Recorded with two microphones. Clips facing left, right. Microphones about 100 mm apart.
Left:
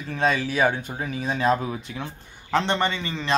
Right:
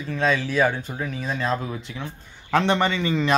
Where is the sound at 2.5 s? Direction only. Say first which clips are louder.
Right 2 dB; 5° right (ahead or behind).